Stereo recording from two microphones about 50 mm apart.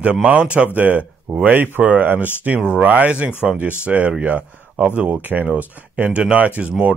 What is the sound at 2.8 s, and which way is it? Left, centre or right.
Speech, right.